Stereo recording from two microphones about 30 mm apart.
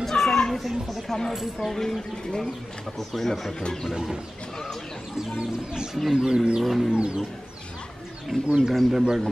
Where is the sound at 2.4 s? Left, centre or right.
Centre.